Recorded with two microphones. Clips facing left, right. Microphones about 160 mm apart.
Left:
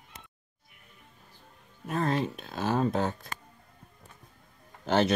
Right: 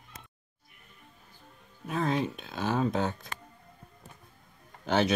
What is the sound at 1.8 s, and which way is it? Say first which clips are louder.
Music: left 1 dB; centre (ahead or behind).